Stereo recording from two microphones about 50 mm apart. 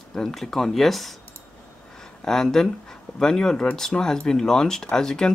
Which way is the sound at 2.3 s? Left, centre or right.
Centre.